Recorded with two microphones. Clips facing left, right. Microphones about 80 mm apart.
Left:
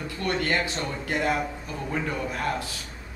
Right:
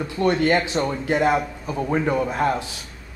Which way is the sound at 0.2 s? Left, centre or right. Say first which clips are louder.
Right 7 dB; right.